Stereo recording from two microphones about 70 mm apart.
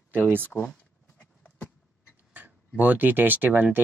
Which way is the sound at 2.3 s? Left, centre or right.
Right.